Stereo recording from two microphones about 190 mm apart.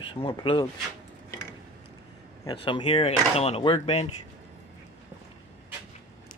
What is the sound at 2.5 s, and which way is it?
Speech, 25° left (ahead or behind).